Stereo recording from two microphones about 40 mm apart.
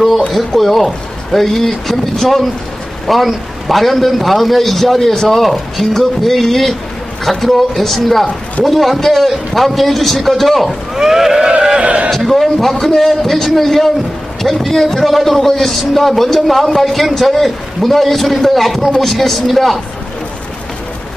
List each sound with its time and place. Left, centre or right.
0.6 s a man's voice: centre
11.0 s a sound: centre
11.8 s a man's voice: right
12.1 s a man's voice: centre